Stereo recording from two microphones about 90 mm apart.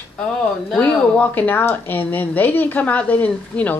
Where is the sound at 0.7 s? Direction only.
15° left (ahead or behind).